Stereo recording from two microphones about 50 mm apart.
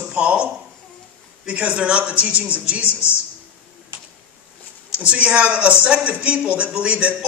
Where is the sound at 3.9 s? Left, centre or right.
Right.